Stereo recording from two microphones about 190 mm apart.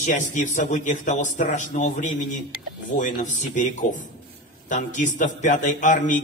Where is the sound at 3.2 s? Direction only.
40° left (ahead or behind).